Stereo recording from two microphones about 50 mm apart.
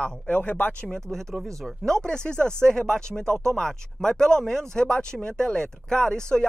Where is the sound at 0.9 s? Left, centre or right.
Centre.